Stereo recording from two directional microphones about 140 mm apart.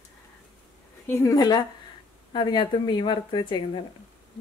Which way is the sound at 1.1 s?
20° left (ahead or behind).